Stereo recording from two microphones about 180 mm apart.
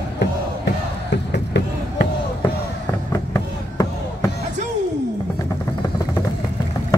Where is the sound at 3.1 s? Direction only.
15° left (ahead or behind).